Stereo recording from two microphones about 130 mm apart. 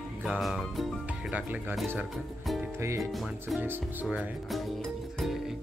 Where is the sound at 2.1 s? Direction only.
Centre (ahead or behind).